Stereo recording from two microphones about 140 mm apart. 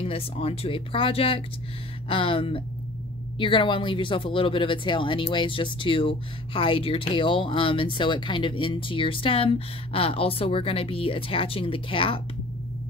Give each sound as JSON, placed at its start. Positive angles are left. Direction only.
{"t": 0.0, "sound": "speech", "side_deg": 45}